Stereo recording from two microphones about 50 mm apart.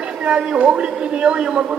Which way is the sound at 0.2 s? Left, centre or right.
Right.